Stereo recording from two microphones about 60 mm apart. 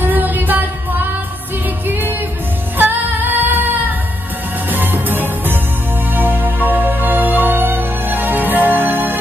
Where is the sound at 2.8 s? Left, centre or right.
Right.